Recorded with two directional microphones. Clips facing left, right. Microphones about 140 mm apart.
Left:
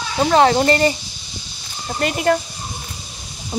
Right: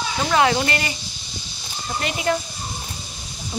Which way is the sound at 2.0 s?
50° left (ahead or behind).